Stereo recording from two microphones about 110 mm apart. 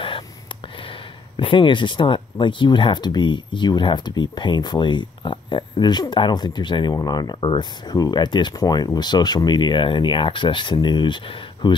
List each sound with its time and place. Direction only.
1.3 s speech: 50° left (ahead or behind)